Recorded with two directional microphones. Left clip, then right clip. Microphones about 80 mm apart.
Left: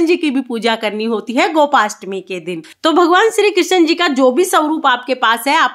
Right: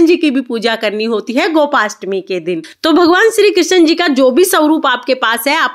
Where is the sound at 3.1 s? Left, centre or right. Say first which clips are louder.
Right 2 dB; centre.